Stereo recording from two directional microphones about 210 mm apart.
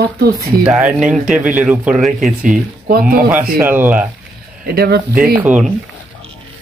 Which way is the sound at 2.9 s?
40° right (ahead or behind).